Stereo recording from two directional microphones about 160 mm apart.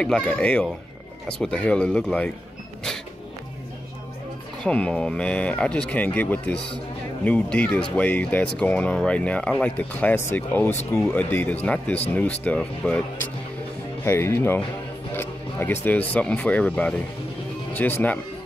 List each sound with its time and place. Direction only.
0.0 s speech: 5° left (ahead or behind)
4.6 s speech: 5° left (ahead or behind)
14.0 s speech: 15° left (ahead or behind)